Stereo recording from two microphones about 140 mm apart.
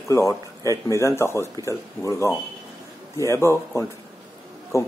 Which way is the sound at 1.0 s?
20° left (ahead or behind).